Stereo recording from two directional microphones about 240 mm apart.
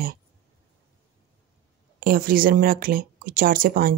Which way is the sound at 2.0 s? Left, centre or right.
Right.